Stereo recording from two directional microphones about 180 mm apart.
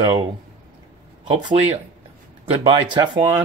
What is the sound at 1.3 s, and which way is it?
Speech, 30° right (ahead or behind).